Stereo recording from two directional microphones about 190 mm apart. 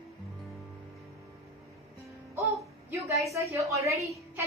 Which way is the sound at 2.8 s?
15° right (ahead or behind).